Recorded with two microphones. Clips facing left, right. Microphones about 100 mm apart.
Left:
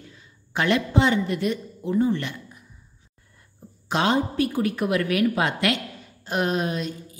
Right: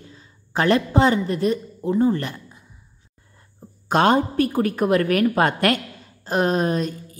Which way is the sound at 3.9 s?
50° right (ahead or behind).